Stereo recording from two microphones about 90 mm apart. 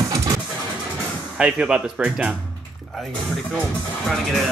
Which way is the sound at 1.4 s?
10° right (ahead or behind).